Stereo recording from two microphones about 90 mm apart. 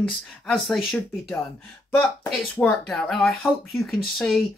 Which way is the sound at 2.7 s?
5° left (ahead or behind).